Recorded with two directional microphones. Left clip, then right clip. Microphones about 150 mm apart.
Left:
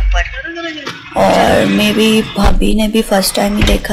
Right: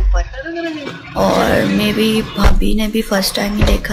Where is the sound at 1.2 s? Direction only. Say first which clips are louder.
Left 4 dB; 25° left (ahead or behind).